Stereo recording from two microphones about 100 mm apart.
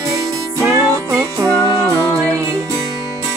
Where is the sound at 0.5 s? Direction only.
30° right (ahead or behind).